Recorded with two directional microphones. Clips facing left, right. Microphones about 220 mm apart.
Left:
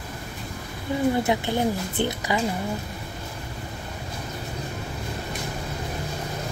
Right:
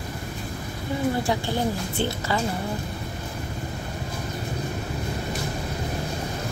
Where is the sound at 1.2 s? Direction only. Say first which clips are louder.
Left 2 dB; 20° left (ahead or behind).